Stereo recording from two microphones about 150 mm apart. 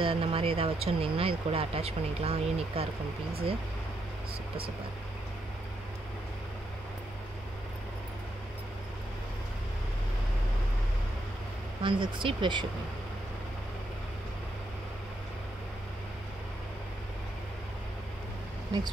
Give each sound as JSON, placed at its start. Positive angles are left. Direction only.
{"t": 0.0, "sound": "speech", "side_deg": -35}
{"t": 11.8, "sound": "speech", "side_deg": -35}